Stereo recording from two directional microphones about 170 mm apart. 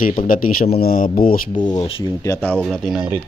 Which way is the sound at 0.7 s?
55° left (ahead or behind).